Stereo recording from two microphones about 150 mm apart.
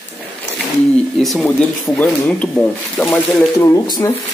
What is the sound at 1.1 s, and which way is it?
Speech, centre (ahead or behind).